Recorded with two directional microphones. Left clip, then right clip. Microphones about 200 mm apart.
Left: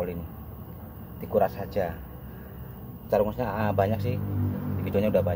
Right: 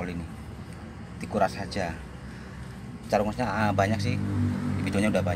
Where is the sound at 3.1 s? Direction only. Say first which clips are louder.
Left 1 dB; centre (ahead or behind).